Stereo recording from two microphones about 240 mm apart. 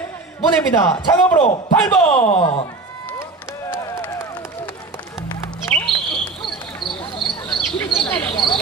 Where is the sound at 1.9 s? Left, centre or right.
Centre.